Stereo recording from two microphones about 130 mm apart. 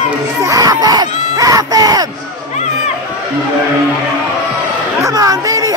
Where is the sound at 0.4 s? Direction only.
25° right (ahead or behind).